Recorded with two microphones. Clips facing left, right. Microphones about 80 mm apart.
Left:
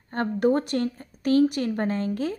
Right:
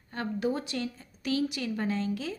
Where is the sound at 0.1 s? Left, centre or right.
Left.